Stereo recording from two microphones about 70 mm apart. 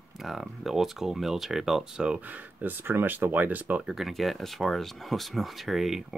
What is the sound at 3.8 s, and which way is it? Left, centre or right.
Speech, centre.